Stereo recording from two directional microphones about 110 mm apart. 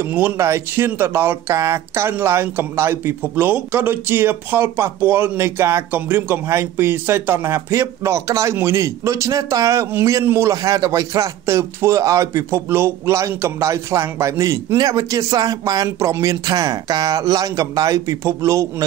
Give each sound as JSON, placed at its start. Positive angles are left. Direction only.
{"t": 0.0, "sound": "speech", "side_deg": -15}